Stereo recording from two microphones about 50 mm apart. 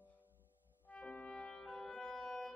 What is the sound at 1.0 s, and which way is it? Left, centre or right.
Music, centre.